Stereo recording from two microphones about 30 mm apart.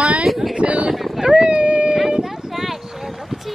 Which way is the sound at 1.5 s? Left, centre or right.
Right.